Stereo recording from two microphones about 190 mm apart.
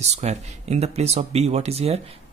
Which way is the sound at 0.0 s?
35° right (ahead or behind).